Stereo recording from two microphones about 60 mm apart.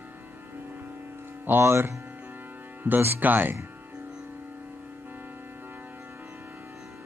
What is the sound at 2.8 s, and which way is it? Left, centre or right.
Speech, right.